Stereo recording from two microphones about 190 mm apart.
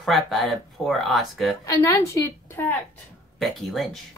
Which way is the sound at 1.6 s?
15° left (ahead or behind).